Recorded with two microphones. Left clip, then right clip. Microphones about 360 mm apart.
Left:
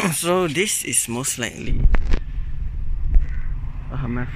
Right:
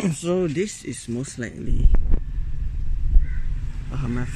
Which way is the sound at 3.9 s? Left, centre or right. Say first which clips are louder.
Left 2 dB; centre.